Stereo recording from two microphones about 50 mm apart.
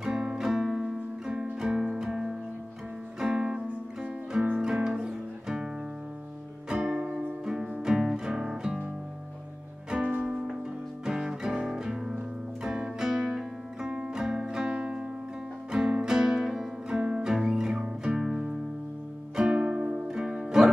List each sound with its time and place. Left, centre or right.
0.0 s music: centre
0.5 s music: centre
6.7 s music: centre
9.8 s music: right
10.2 s music: centre
13.8 s music: centre
14.7 s music: right